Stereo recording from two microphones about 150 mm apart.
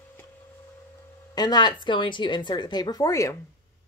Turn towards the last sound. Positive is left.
turn(degrees=20)  # may be behind; listen again after turning